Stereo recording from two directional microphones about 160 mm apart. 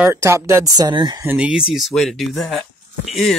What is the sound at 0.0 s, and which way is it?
Speech, 15° right (ahead or behind).